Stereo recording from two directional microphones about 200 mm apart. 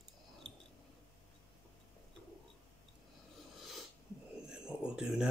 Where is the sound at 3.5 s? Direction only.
Centre (ahead or behind).